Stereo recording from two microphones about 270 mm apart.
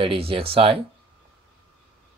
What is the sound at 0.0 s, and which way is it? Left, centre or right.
Speech, centre.